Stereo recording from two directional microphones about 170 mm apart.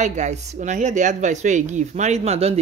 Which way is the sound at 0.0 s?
45° right (ahead or behind).